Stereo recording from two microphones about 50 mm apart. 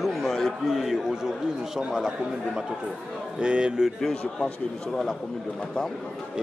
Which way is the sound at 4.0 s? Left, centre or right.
Centre.